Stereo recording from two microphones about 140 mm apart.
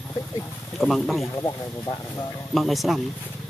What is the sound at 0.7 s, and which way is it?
Speech, centre (ahead or behind).